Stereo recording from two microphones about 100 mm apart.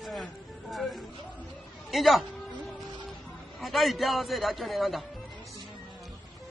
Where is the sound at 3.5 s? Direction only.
Centre (ahead or behind).